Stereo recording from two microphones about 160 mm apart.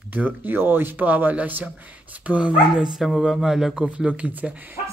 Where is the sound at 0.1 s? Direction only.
10° right (ahead or behind).